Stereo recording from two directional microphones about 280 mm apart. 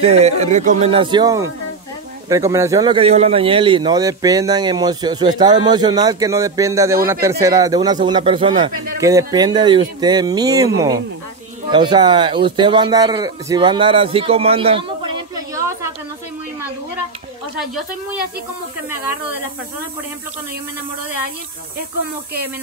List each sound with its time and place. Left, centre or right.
0.0 s a man's voice: right